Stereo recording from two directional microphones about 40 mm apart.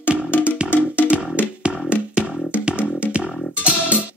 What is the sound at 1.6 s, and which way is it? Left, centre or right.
Music, right.